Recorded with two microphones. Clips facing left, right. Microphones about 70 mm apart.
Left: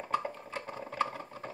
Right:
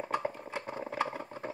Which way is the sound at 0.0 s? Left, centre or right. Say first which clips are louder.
Even; centre.